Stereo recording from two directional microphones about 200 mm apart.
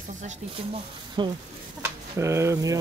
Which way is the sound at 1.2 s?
20° right (ahead or behind).